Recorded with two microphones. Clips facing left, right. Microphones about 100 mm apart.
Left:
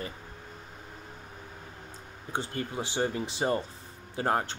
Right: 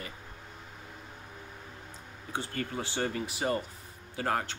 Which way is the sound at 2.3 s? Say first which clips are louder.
Left 2 dB; 20° left (ahead or behind).